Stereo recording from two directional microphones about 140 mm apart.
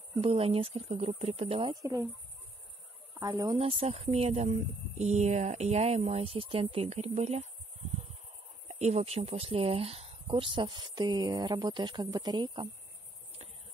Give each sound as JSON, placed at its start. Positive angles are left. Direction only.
{"t": 0.2, "sound": "speech", "side_deg": -45}
{"t": 1.7, "sound": "speech", "side_deg": -25}
{"t": 3.2, "sound": "speech", "side_deg": -30}
{"t": 3.5, "sound": "speech", "side_deg": -45}